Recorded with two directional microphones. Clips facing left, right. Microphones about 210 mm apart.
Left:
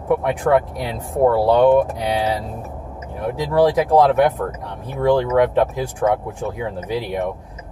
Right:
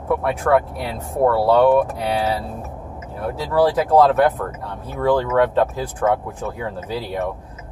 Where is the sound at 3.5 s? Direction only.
15° left (ahead or behind).